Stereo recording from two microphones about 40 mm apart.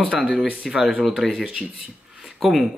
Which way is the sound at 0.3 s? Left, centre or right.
Right.